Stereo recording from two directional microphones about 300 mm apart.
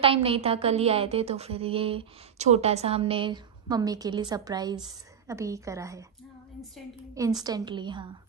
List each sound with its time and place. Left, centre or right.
0.0 s a woman's voice: centre
7.2 s a woman's voice: centre